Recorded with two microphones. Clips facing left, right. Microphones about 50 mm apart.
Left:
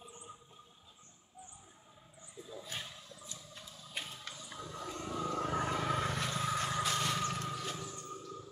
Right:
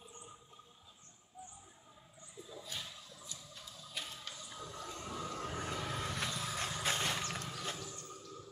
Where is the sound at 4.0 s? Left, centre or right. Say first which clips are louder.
Left 2 dB; left; by 5.3 s centre.